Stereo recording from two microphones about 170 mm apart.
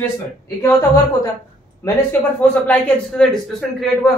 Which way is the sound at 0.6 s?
20° left (ahead or behind).